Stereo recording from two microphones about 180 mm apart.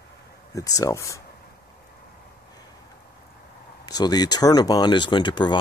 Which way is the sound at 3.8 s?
20° left (ahead or behind).